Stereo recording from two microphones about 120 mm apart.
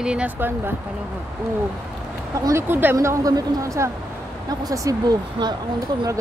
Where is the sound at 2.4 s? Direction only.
20° right (ahead or behind).